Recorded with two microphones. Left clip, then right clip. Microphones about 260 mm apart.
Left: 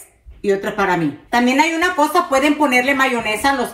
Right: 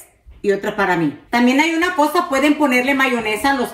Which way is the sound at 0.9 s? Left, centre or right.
Centre.